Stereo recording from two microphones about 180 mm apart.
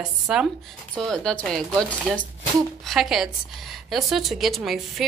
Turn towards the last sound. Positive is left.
turn(degrees=0)  # may be behind; listen again after turning